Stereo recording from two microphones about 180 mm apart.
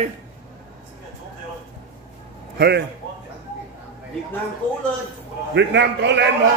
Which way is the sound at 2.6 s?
65° right (ahead or behind).